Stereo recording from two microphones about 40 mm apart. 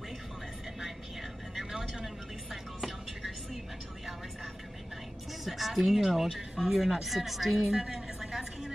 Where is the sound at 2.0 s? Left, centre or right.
Centre.